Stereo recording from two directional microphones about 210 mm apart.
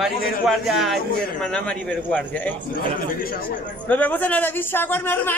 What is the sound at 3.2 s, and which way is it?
Speech, 45° left (ahead or behind).